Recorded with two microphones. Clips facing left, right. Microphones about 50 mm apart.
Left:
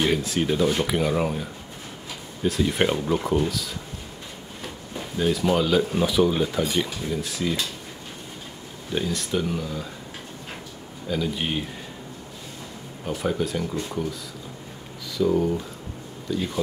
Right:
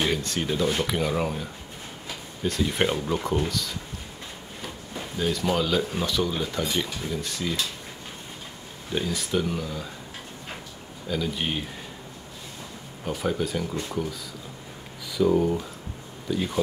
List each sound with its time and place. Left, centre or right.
0.0 s speech: centre
4.9 s speech: centre
8.9 s speech: centre
11.1 s speech: centre
13.0 s speech: centre
15.1 s speech: centre